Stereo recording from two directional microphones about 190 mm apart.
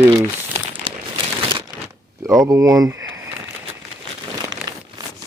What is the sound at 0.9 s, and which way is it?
Crumpling, 25° right (ahead or behind).